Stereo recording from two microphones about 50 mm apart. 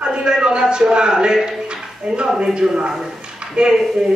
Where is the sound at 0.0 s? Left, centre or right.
Centre.